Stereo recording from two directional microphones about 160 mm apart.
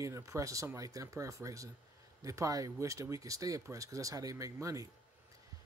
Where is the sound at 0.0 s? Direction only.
20° right (ahead or behind).